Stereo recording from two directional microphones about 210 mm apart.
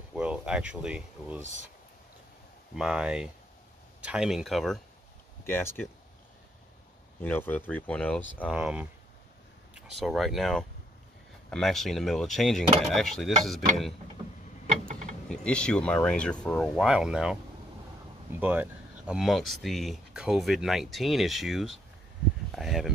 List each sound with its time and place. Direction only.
0.1 s speech: 5° right (ahead or behind)
2.7 s speech: 5° right (ahead or behind)
5.4 s speech: 10° left (ahead or behind)
7.2 s speech: 10° left (ahead or behind)
9.9 s speech: centre (ahead or behind)
15.2 s speech: 5° left (ahead or behind)
18.4 s speech: 10° right (ahead or behind)
22.5 s a sound: centre (ahead or behind)